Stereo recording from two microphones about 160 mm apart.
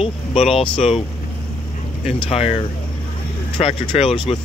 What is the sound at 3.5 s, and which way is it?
Speech, 35° left (ahead or behind).